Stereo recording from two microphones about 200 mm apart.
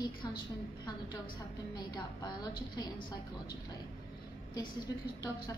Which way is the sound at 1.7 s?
20° left (ahead or behind).